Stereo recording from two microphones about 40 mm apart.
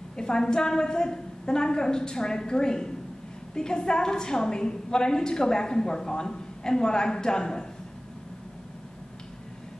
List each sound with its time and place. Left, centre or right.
0.1 s a woman's voice: centre